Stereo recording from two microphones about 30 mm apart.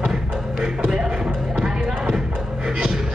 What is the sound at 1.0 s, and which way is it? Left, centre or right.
Music, right.